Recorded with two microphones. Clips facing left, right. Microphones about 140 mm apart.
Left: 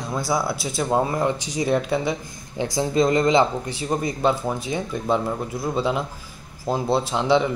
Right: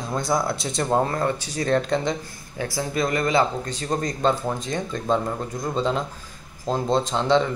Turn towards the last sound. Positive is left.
turn(degrees=10)  # may be behind; listen again after turning